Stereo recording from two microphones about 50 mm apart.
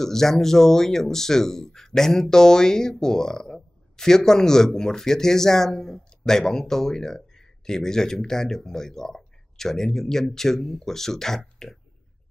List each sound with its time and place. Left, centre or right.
0.0 s speech: centre